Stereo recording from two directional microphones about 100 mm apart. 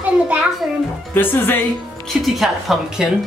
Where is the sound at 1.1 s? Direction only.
20° left (ahead or behind).